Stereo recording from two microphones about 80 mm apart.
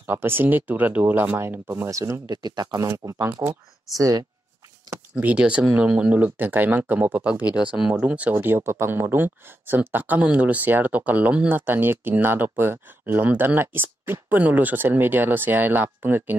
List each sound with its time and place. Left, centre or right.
0.1 s speech: right
1.7 s speech: right
2.2 s speech: right
2.9 s speech: right
4.0 s speech: right
5.2 s speech: centre
7.5 s speech: centre; by 16.3 s right